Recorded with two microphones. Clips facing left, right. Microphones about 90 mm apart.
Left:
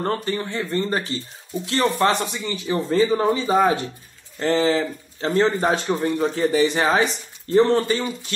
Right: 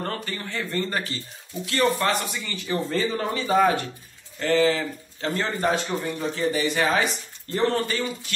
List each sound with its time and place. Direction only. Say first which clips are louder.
0.0 s speech: left 7 dB; 30° left (ahead or behind)